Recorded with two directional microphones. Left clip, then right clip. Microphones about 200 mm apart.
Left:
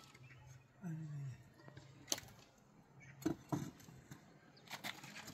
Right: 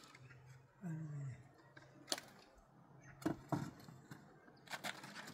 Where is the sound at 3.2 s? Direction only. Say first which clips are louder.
Even; 30° right (ahead or behind).